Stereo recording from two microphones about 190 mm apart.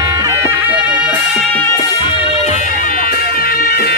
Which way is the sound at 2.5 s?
40° left (ahead or behind).